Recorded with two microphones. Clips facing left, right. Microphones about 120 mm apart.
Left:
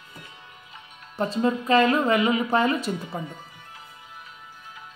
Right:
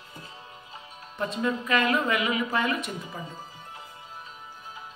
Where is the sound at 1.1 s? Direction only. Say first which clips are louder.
Left 4 dB; 30° left (ahead or behind).